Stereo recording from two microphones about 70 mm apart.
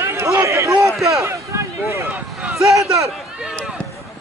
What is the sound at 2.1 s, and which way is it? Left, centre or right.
Speech, centre.